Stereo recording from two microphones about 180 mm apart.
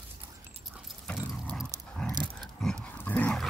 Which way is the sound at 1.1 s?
5° left (ahead or behind).